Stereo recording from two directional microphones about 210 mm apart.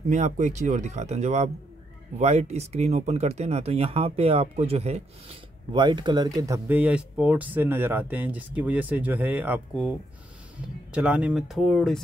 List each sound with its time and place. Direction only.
0.1 s speech: 35° right (ahead or behind); by 12.0 s centre (ahead or behind)